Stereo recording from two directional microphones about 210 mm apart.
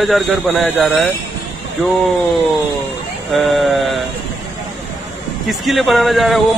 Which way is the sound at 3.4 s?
Centre (ahead or behind).